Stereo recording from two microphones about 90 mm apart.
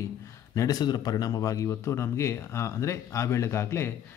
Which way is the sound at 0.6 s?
45° left (ahead or behind).